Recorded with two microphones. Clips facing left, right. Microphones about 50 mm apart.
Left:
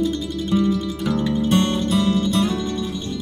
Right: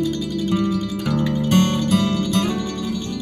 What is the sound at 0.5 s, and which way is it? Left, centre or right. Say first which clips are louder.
Music: left 3 dB; right.